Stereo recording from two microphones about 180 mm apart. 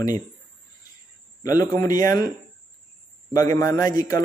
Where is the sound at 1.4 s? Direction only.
20° left (ahead or behind).